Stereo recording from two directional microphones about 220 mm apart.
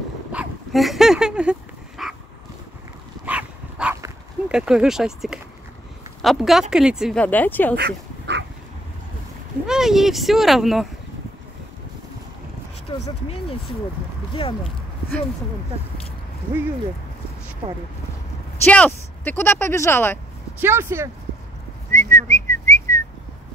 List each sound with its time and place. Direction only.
0.3 s dog: 5° right (ahead or behind)
3.3 s dog: 5° right (ahead or behind)
6.2 s speech: centre (ahead or behind)
7.7 s dog: 50° right (ahead or behind)
9.7 s speech: centre (ahead or behind)
12.8 s speech: 25° left (ahead or behind)
18.7 s speech: 5° left (ahead or behind)
20.6 s speech: 10° right (ahead or behind)
21.9 s whistling: 10° left (ahead or behind)